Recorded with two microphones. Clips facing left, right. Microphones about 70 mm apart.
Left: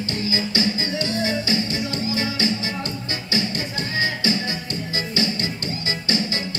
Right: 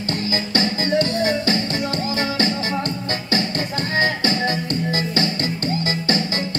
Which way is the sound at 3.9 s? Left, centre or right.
Right.